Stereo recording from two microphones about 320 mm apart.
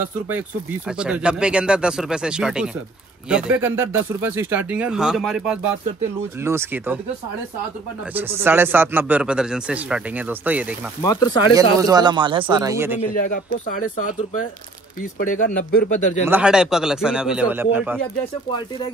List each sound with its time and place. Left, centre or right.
0.8 s a man's voice: centre
8.1 s a man's voice: centre
11.1 s speech: centre
11.8 s speech: centre
13.1 s speech: left
15.2 s speech: left
16.3 s a man's voice: centre